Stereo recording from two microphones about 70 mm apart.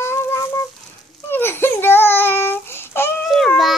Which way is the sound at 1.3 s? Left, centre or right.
Left.